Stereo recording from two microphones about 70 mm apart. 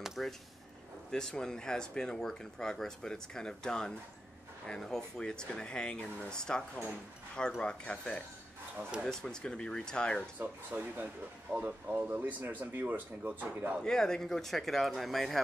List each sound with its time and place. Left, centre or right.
0.0 s a sound: centre
1.1 s speech: centre
10.4 s speech: right
13.8 s speech: centre